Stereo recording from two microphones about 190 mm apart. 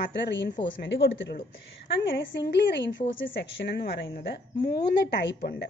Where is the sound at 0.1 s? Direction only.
65° left (ahead or behind).